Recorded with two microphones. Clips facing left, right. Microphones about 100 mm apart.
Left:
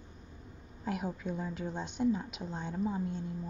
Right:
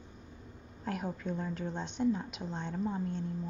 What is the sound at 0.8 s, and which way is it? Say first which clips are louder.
A woman's voice: left 1 dB; 5° left (ahead or behind).